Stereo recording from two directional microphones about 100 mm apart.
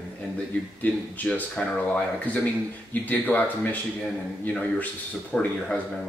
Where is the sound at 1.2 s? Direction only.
15° left (ahead or behind).